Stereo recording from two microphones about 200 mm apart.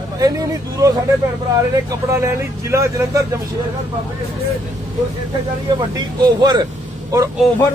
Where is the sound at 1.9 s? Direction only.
15° right (ahead or behind).